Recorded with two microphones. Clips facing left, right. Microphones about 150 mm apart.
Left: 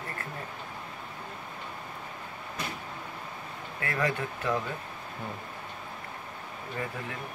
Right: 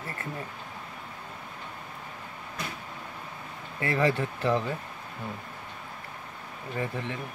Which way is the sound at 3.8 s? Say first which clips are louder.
Right 5 dB; 30° right (ahead or behind).